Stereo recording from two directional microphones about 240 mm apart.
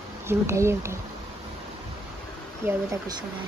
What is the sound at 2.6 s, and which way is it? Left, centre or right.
Speech, centre.